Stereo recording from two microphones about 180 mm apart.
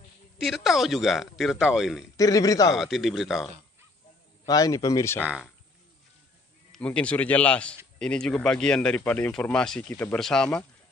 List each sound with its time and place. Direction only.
0.4 s a man's voice: centre (ahead or behind)
2.1 s a man's voice: 20° left (ahead or behind)
2.7 s a man's voice: centre (ahead or behind)
4.5 s a man's voice: 20° left (ahead or behind)
5.2 s a man's voice: 5° right (ahead or behind)
6.7 s a man's voice: 5° left (ahead or behind)